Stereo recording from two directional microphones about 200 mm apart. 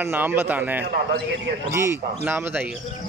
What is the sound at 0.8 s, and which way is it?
Speech, 50° right (ahead or behind).